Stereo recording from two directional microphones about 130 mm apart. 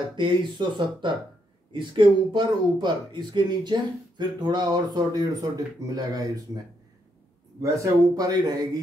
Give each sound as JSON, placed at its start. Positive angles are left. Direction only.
{"t": 0.1, "sound": "speech", "side_deg": -35}
{"t": 7.6, "sound": "speech", "side_deg": -25}